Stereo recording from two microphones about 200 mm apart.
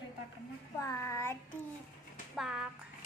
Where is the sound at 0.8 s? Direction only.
15° left (ahead or behind).